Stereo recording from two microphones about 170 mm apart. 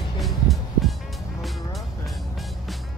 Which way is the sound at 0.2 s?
Centre (ahead or behind).